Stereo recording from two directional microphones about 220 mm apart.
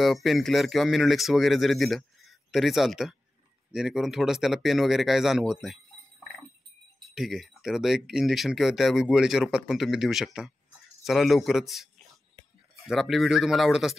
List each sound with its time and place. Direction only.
0.0 s speech: centre (ahead or behind)
7.2 s a man's voice: centre (ahead or behind)